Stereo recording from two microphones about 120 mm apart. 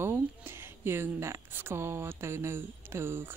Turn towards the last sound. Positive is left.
turn(degrees=-20)  # may be behind; listen again after turning